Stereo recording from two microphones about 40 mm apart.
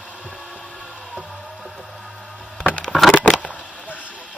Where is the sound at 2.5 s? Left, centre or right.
Left.